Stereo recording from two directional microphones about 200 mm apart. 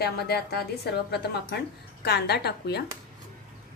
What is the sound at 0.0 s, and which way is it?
Speech, 55° left (ahead or behind).